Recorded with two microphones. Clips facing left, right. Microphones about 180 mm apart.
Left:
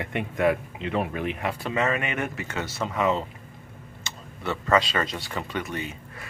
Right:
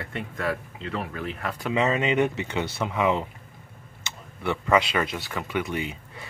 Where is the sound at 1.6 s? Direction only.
15° right (ahead or behind).